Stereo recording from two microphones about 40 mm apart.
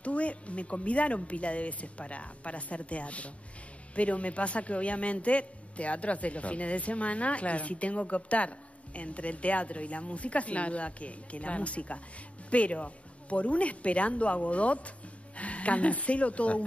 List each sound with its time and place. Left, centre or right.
0.0 s a man's voice: left